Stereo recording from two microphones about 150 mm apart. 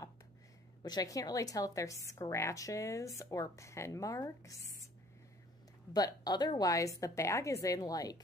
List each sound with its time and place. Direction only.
0.8 s a woman's voice: 25° left (ahead or behind)
5.9 s a woman's voice: 25° left (ahead or behind)